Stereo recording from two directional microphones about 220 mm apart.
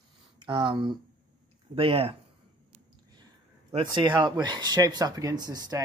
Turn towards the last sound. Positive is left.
turn(degrees=-15)  # may be behind; listen again after turning